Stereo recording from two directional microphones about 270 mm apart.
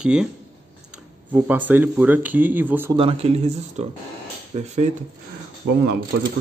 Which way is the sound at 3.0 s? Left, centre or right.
Right.